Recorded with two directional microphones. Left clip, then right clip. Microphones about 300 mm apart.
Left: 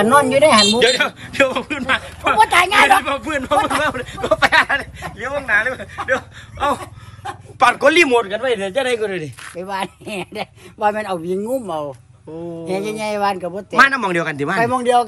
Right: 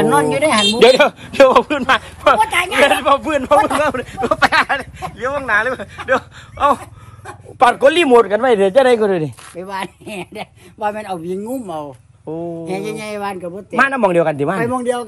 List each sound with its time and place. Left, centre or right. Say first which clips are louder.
0.0 s speech: left 2 dB; centre
2.5 s a woman's voice: left 2 dB; left
3.0 s speech: right 6 dB; centre
8.1 s speech: right 6 dB; centre
9.4 s speech: left 1 dB; centre